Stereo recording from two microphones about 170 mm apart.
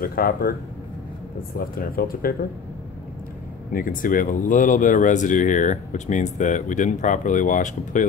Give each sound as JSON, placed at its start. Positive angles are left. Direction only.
{"t": 0.0, "sound": "speech", "side_deg": 60}
{"t": 1.6, "sound": "speech", "side_deg": 60}
{"t": 3.7, "sound": "speech", "side_deg": 55}